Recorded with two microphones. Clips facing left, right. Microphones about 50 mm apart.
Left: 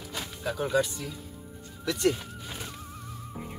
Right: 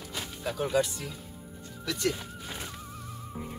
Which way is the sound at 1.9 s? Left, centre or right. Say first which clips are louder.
Left 4 dB; left.